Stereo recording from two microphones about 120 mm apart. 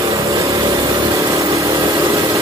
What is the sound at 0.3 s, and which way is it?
Vehicle, 30° right (ahead or behind).